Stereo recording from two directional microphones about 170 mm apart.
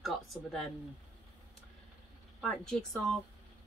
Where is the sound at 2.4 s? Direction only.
Centre (ahead or behind).